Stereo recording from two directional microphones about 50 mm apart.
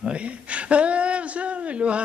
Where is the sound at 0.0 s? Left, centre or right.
Right.